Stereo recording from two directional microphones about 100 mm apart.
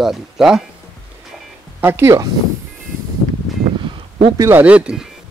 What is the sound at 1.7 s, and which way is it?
Speech, 20° right (ahead or behind).